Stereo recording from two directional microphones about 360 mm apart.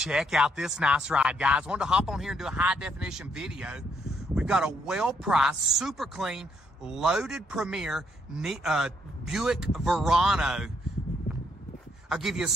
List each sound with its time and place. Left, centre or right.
0.0 s speech: centre
12.1 s speech: centre